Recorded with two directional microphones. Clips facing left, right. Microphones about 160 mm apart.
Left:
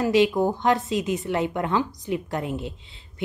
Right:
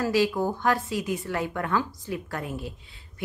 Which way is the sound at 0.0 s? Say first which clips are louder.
Left 4 dB; 20° left (ahead or behind).